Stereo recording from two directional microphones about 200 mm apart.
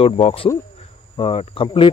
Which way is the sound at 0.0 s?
30° left (ahead or behind).